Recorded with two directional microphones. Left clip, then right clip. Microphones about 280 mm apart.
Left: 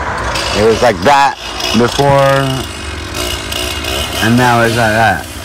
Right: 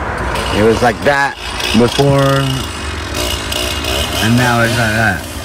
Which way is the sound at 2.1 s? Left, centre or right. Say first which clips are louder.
Left 4 dB; centre.